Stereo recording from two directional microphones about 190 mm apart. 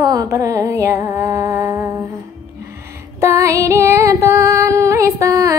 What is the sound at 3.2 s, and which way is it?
Music, 15° right (ahead or behind).